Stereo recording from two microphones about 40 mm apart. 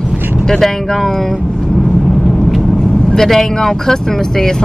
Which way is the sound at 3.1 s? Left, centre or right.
Centre.